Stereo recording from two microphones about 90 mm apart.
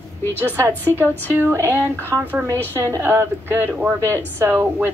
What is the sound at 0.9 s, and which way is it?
Speech, 25° right (ahead or behind).